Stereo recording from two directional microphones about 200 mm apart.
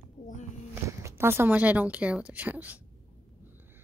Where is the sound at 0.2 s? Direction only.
40° left (ahead or behind).